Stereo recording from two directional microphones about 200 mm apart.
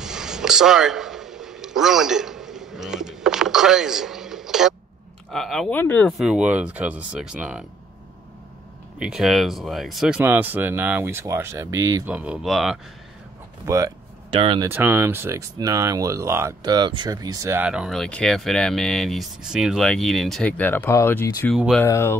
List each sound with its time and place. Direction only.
0.0 s a sound: 5° right (ahead or behind)
5.3 s speech: centre (ahead or behind)
9.0 s speech: centre (ahead or behind)
12.1 s speech: 5° right (ahead or behind)
13.7 s speech: 15° right (ahead or behind)
14.3 s speech: 25° right (ahead or behind)
14.7 s speech: 10° right (ahead or behind); by 22.2 s 10° left (ahead or behind)